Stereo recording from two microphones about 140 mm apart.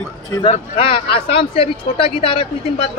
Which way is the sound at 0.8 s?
40° left (ahead or behind).